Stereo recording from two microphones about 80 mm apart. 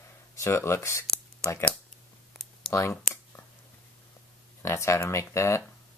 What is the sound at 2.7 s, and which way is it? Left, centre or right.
Clicking, left.